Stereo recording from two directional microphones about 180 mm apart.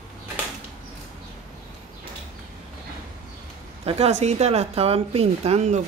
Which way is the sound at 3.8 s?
35° right (ahead or behind).